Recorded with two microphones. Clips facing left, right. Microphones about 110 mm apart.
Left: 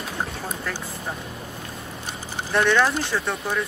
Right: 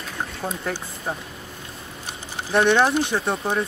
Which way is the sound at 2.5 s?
20° right (ahead or behind).